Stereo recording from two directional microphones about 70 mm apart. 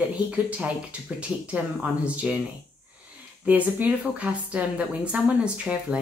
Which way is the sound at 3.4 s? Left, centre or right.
Right.